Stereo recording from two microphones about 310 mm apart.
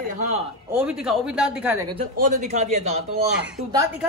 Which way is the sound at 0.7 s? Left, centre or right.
Centre.